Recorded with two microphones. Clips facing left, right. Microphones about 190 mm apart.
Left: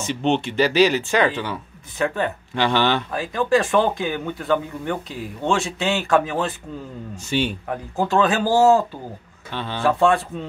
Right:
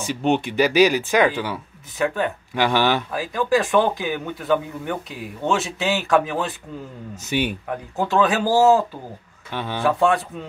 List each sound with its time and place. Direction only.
0.0 s speech: 10° right (ahead or behind)
7.2 s speech: 15° right (ahead or behind)
7.7 s speech: centre (ahead or behind)
9.5 s speech: 15° right (ahead or behind)
9.8 s speech: centre (ahead or behind)